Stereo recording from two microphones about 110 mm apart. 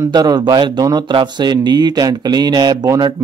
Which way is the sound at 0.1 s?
40° right (ahead or behind).